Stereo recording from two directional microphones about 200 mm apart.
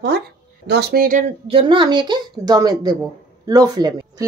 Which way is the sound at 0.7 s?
55° right (ahead or behind).